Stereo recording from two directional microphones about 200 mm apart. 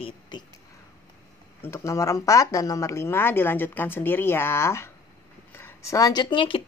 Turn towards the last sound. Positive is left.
turn(degrees=25)  # may be behind; listen again after turning